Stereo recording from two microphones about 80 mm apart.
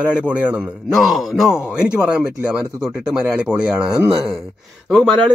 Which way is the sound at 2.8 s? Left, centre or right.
Centre.